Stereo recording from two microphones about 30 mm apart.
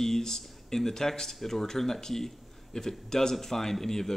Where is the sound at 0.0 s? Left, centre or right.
Centre.